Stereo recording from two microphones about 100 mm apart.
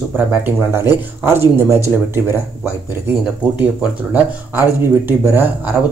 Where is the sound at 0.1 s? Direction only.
20° right (ahead or behind).